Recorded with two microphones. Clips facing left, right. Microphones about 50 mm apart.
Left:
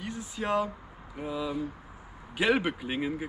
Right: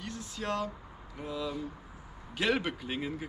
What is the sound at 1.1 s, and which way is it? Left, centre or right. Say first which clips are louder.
Speech: left 4 dB; centre.